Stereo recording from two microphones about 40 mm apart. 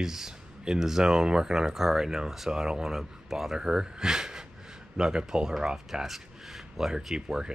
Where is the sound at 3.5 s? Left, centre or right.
Centre.